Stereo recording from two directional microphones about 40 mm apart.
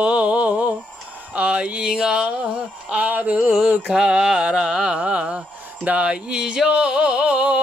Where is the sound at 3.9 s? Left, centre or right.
Centre.